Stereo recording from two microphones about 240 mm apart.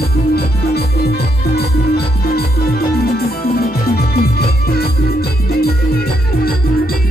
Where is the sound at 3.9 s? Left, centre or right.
Left.